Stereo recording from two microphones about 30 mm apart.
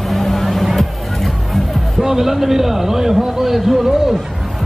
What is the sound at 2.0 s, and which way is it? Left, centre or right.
A man's voice, centre.